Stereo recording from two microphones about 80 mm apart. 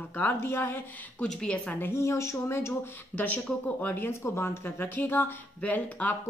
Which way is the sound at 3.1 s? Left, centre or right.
Centre.